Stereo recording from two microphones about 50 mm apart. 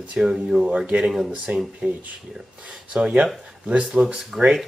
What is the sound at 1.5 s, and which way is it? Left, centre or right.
Speech, right.